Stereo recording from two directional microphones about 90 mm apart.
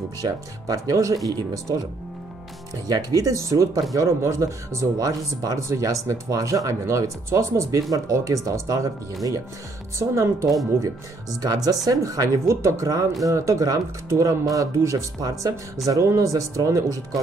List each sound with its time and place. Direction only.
0.2 s speech: 40° right (ahead or behind)
2.9 s speech: 45° right (ahead or behind)
11.4 s speech: 45° right (ahead or behind)